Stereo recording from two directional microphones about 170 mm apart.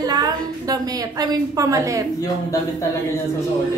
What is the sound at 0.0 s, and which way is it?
A woman's voice, 20° right (ahead or behind).